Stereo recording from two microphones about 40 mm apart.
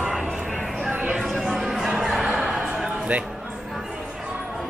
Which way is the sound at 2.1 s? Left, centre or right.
Centre.